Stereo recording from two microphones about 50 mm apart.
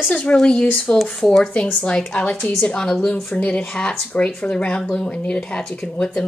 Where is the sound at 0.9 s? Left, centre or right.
Centre.